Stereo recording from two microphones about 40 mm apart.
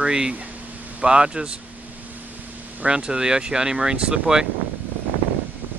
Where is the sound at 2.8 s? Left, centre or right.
Right.